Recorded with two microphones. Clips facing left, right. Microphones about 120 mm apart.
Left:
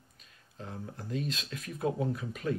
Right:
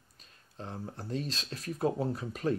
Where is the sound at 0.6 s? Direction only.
35° right (ahead or behind).